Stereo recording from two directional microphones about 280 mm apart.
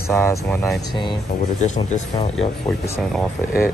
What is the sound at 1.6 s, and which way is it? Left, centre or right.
Speech, left.